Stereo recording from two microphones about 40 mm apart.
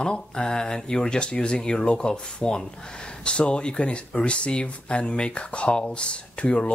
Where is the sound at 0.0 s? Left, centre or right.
Left.